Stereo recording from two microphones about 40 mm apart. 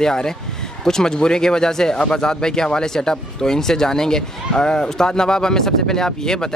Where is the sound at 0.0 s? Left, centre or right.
Centre.